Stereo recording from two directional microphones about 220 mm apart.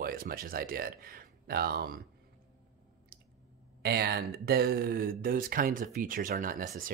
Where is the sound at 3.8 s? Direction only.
45° right (ahead or behind).